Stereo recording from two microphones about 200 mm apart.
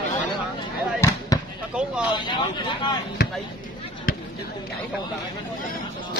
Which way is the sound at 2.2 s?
20° left (ahead or behind).